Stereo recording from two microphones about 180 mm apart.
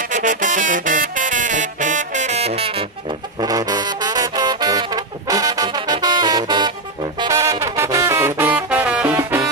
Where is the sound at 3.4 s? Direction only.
20° right (ahead or behind).